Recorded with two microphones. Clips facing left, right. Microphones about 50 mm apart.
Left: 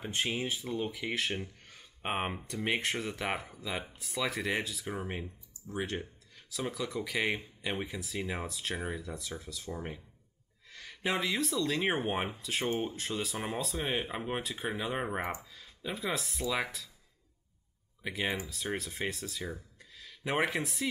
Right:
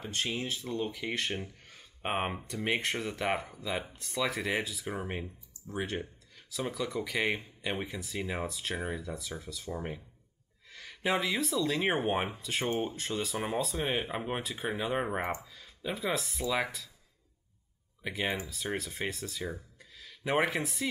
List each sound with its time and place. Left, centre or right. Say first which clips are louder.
0.0 s speech: left 1 dB; centre
18.0 s speech: right 1 dB; centre